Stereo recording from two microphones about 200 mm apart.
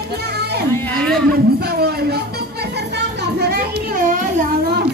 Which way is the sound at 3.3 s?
50° right (ahead or behind).